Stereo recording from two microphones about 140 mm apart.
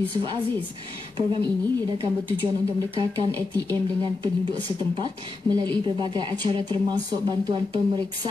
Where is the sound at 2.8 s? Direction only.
25° right (ahead or behind).